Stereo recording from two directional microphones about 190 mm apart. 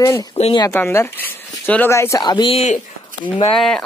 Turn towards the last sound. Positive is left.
turn(degrees=5)  # may be behind; listen again after turning